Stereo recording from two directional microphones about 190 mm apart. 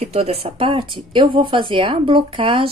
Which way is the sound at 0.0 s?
35° right (ahead or behind).